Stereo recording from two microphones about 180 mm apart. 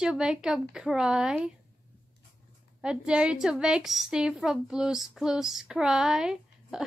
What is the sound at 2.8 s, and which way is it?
A woman's voice, 5° right (ahead or behind).